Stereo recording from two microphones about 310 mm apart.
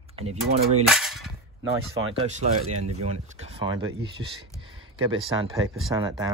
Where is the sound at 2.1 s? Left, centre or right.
Right.